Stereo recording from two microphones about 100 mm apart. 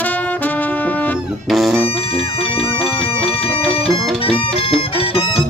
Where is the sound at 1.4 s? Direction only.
Centre (ahead or behind).